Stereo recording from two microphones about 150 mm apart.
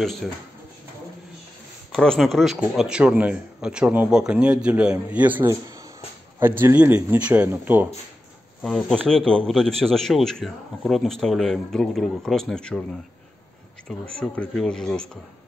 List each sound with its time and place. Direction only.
0.0 s speech: centre (ahead or behind)
1.9 s a man's voice: 5° left (ahead or behind); by 7.9 s 10° right (ahead or behind)
8.6 s speech: 5° left (ahead or behind)
13.8 s speech: 5° left (ahead or behind)